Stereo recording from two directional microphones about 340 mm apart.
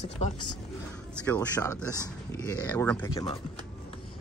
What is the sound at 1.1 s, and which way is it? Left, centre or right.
Speech, centre.